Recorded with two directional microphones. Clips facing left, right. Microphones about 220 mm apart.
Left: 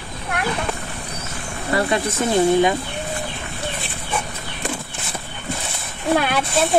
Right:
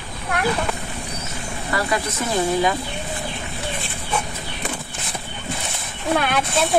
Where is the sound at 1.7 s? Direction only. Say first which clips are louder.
Left 4 dB; 25° left (ahead or behind).